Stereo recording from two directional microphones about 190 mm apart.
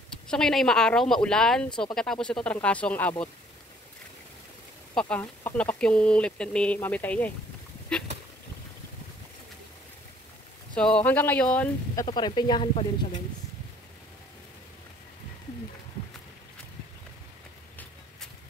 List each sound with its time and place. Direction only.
0.3 s speech: 5° left (ahead or behind)
4.9 s speech: 10° left (ahead or behind)
7.9 s a sound: 5° left (ahead or behind)
10.7 s speech: 5° left (ahead or behind)
11.9 s speech: 20° left (ahead or behind)